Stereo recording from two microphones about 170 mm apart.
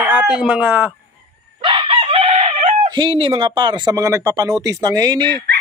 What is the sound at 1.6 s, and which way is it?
Speech, 35° right (ahead or behind).